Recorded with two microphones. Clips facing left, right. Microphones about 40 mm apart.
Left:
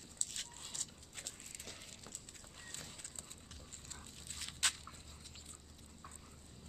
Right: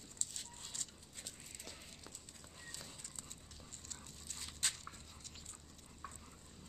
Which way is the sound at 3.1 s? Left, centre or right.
Left.